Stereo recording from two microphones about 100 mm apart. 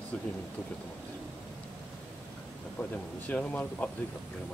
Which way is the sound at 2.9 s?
15° left (ahead or behind).